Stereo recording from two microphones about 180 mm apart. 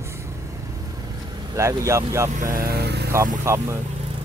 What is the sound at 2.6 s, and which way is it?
Speech, 60° right (ahead or behind).